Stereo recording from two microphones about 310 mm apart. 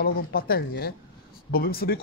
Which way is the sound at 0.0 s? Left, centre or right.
Left.